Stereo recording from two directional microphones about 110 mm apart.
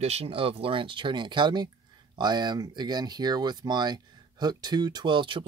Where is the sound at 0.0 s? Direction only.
70° right (ahead or behind).